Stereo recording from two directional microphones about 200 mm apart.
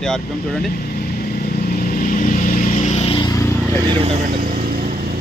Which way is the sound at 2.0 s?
40° left (ahead or behind).